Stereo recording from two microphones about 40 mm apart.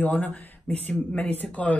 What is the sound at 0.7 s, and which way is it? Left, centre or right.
Speech, left.